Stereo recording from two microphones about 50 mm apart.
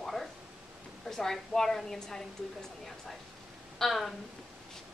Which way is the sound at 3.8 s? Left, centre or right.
Centre.